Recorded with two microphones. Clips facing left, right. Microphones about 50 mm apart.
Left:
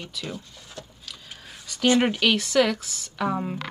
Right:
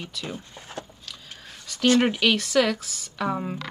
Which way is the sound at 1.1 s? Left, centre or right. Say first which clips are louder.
Even; centre.